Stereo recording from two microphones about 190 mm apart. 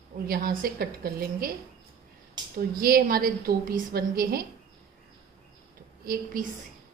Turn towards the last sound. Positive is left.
turn(degrees=-50)  # may be behind; listen again after turning